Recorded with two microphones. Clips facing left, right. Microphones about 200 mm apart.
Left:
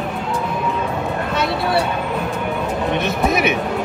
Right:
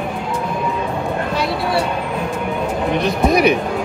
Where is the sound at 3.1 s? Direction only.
5° left (ahead or behind).